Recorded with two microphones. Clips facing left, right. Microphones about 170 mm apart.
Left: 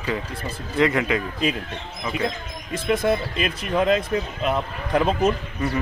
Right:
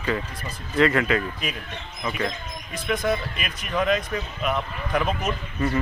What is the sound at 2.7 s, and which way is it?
Speech, 25° left (ahead or behind).